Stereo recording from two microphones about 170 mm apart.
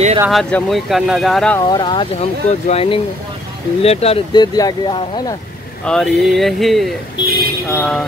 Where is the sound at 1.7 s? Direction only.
25° left (ahead or behind).